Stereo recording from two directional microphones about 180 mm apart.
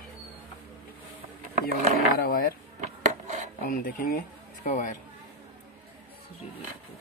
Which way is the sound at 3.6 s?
50° left (ahead or behind).